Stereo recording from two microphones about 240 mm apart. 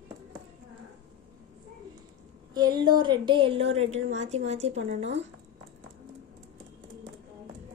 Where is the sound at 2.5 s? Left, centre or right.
Centre.